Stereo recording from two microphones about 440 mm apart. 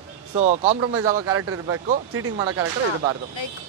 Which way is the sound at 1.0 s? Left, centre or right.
Right.